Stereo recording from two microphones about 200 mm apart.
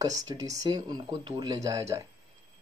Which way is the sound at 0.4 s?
20° right (ahead or behind).